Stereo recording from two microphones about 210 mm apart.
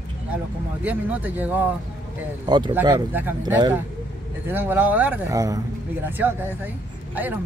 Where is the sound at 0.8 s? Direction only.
10° right (ahead or behind).